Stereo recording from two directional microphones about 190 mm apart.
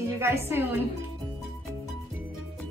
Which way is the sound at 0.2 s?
15° right (ahead or behind).